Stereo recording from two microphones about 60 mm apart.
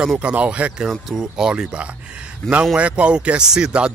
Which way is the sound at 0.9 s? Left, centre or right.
Centre.